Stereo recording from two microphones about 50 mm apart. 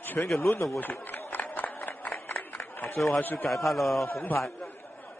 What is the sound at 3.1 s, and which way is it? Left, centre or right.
Speech, left.